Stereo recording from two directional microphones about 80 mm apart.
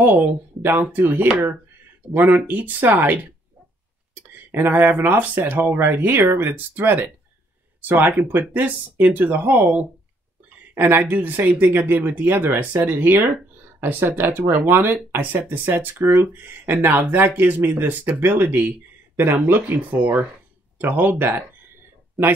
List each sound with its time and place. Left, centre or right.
0.0 s speech: right
4.5 s speech: right